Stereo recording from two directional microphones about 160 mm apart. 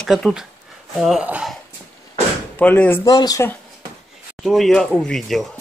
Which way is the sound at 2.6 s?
10° left (ahead or behind).